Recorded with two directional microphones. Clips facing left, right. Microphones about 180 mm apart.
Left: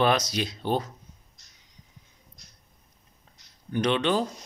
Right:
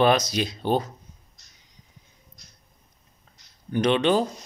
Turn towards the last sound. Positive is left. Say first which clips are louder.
# right 4 dB
turn(degrees=-20)  # may be behind; listen again after turning